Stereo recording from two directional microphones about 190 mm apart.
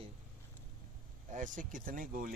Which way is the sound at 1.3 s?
45° right (ahead or behind).